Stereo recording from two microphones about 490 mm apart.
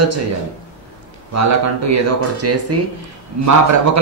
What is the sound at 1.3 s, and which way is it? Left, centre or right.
A man's voice, right.